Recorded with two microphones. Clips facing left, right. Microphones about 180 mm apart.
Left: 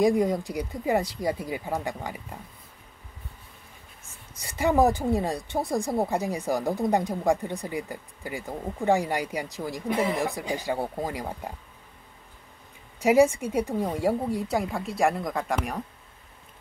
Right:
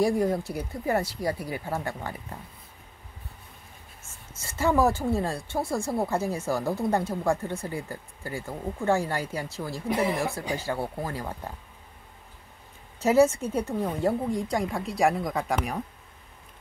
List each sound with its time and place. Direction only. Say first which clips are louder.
0.0 s speech: left 2 dB; 15° left (ahead or behind)
4.3 s speech: even; 15° left (ahead or behind)
13.0 s a woman's voice: left 1 dB; 10° left (ahead or behind)